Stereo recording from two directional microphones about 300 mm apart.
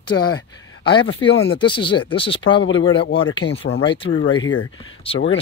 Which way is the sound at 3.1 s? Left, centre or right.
Centre.